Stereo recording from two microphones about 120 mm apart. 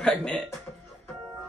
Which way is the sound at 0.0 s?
5° left (ahead or behind).